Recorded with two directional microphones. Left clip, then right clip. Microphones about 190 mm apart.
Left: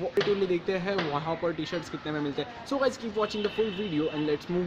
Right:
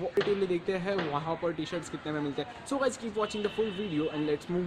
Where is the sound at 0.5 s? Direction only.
5° right (ahead or behind).